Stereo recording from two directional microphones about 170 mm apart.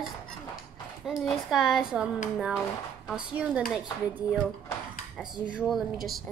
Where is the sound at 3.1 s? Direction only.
5° right (ahead or behind).